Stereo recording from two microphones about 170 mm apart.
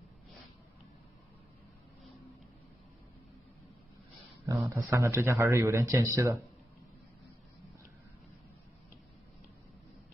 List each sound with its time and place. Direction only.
4.5 s speech: 20° right (ahead or behind)